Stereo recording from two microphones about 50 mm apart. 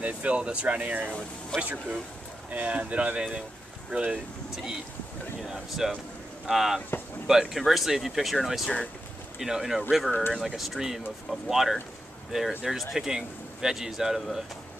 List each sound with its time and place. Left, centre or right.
0.0 s speech: right
1.5 s speech: centre
2.5 s speech: right
5.4 s speech: centre